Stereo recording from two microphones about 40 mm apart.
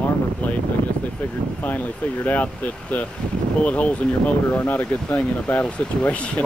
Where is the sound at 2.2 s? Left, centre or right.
Left.